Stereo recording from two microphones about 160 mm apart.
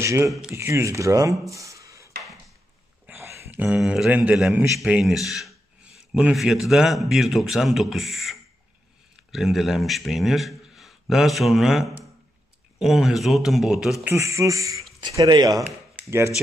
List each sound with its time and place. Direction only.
0.0 s speech: 15° right (ahead or behind)
0.3 s speech: 5° right (ahead or behind)
0.6 s speech: 15° right (ahead or behind)
1.5 s a sound: 20° right (ahead or behind)
3.1 s a man's voice: 15° right (ahead or behind)
14.1 s speech: 20° right (ahead or behind)